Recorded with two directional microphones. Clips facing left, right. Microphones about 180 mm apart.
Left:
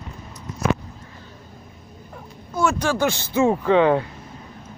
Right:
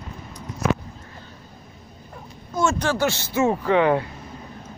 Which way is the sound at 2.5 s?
10° left (ahead or behind).